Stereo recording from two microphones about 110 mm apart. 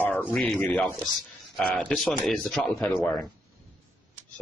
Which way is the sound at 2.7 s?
15° left (ahead or behind).